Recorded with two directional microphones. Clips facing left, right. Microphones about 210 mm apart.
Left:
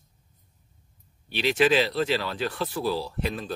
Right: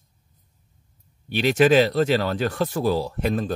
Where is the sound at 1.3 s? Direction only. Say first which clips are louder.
Right 5 dB; 45° right (ahead or behind).